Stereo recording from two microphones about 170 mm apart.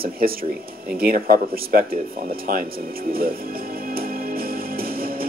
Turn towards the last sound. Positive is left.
turn(degrees=-60)  # may be behind; listen again after turning